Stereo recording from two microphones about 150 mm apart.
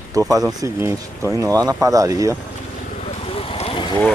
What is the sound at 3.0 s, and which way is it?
Vehicle, 40° left (ahead or behind).